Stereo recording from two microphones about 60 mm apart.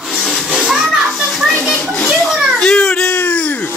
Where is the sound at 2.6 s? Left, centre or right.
Centre.